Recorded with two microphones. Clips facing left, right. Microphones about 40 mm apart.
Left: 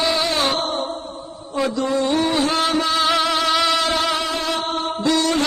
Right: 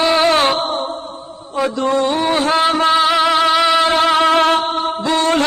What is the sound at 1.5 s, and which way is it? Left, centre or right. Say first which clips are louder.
Mantra: right 4 dB; right.